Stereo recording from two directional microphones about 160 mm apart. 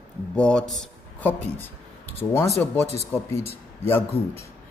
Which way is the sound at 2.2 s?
20° left (ahead or behind).